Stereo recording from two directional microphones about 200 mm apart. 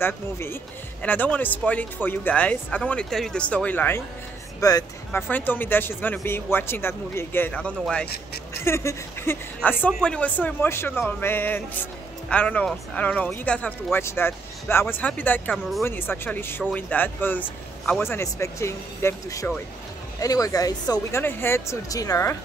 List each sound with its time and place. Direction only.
0.0 s speech: 10° left (ahead or behind)